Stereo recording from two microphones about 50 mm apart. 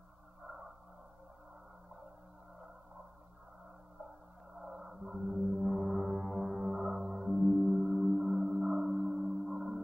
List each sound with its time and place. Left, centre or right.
4.6 s music: centre